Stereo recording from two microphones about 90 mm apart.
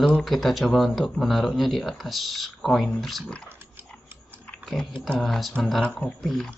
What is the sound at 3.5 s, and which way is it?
Biting, 25° right (ahead or behind).